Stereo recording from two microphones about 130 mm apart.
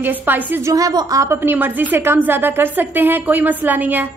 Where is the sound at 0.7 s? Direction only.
25° right (ahead or behind).